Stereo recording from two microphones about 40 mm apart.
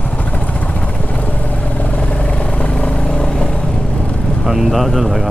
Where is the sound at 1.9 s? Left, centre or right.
Left.